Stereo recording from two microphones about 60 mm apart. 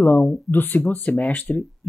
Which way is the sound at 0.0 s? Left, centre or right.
Left.